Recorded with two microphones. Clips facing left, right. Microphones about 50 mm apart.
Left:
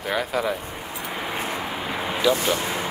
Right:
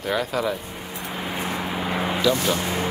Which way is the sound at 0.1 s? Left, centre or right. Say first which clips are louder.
Even; centre.